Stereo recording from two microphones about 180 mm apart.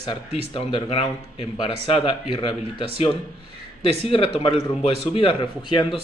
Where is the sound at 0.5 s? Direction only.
30° left (ahead or behind).